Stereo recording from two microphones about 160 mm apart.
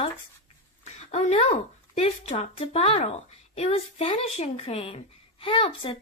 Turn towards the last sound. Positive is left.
turn(degrees=35)  # may be behind; listen again after turning